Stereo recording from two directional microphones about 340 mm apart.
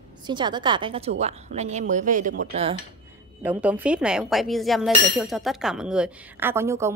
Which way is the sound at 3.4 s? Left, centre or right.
Centre.